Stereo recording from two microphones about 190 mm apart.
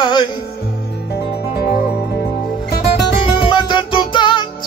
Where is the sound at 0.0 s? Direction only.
25° left (ahead or behind).